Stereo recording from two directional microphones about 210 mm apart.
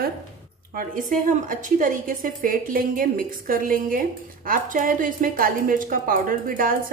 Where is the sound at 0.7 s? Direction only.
40° right (ahead or behind).